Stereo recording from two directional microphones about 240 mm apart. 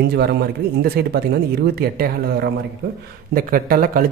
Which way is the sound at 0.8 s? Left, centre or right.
Right.